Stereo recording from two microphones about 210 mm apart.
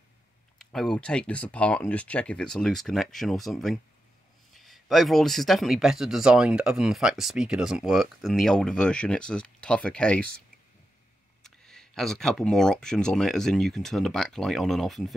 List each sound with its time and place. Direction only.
0.6 s speech: 5° left (ahead or behind)
11.4 s speech: 5° left (ahead or behind)